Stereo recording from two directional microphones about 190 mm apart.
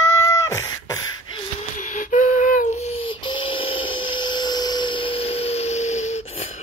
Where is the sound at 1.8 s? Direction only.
45° left (ahead or behind).